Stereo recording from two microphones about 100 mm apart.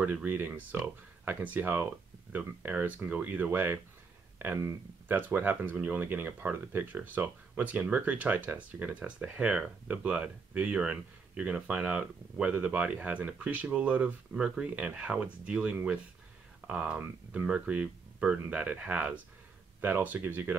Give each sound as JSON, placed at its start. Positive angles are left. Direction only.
{"t": 0.0, "sound": "speech", "side_deg": -15}